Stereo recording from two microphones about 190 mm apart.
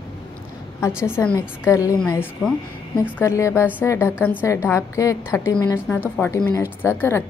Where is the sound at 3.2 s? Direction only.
15° left (ahead or behind).